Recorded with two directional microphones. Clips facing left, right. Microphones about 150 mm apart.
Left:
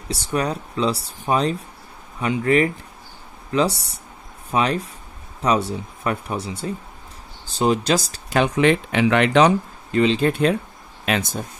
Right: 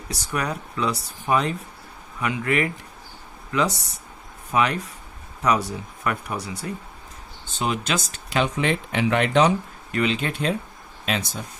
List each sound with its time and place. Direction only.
0.1 s speech: 30° left (ahead or behind)
8.4 s speech: 75° left (ahead or behind)
9.8 s speech: 30° left (ahead or behind)
11.1 s speech: 55° left (ahead or behind)